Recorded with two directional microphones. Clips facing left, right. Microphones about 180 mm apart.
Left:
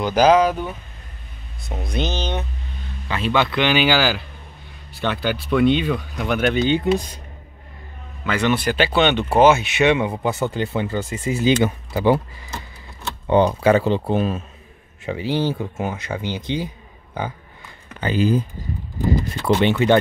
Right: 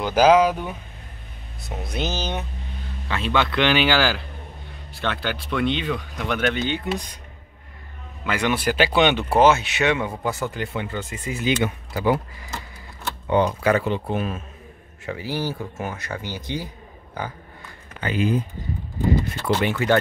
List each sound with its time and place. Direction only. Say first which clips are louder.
0.0 s speech: left 1 dB; 5° right (ahead or behind); by 6.8 s 15° left (ahead or behind)
8.2 s speech: left 3 dB; 10° right (ahead or behind)
9.4 s speech: left 3 dB; 10° left (ahead or behind); by 12.2 s 30° left (ahead or behind)
13.3 s speech: left 4 dB; 30° left (ahead or behind)
18.0 s speech: left 3 dB; 35° left (ahead or behind)
19.4 s speech: left 8 dB; 25° left (ahead or behind)